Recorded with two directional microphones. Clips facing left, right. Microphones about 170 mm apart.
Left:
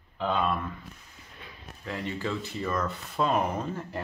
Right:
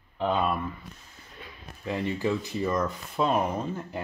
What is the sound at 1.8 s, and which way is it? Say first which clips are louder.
Speech: right 5 dB; 15° right (ahead or behind).